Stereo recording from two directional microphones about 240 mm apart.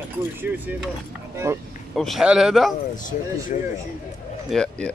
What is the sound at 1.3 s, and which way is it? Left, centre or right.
Speech, centre.